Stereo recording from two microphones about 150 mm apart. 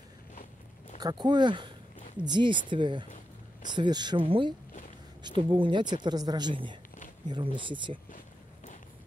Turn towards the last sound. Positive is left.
turn(degrees=-35)  # may be behind; listen again after turning